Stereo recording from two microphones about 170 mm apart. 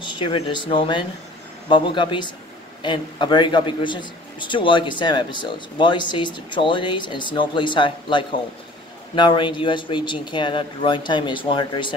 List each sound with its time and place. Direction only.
0.0 s a man's voice: 30° left (ahead or behind)